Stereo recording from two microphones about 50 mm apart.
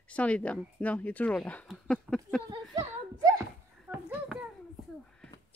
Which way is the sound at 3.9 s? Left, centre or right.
Right.